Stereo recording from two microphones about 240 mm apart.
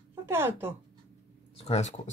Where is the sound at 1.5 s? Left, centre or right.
Left.